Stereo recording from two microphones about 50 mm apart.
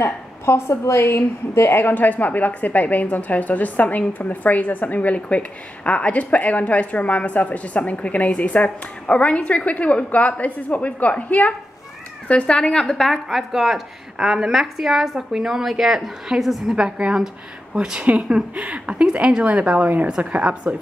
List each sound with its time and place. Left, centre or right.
0.0 s a woman's voice: left
12.8 s a woman's voice: centre
16.7 s a woman's voice: centre
18.0 s a woman's voice: right